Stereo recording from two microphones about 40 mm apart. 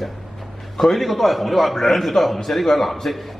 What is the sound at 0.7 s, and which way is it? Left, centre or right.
A man's voice, centre.